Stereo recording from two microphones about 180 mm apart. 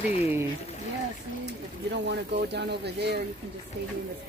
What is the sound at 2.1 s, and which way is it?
Speech, 70° right (ahead or behind).